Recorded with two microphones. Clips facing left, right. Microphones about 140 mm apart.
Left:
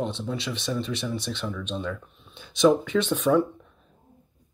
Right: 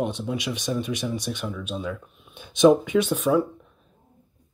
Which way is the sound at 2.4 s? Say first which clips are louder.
Right 3 dB; 20° right (ahead or behind).